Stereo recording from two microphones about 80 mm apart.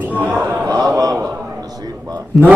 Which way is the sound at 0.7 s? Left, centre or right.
Right.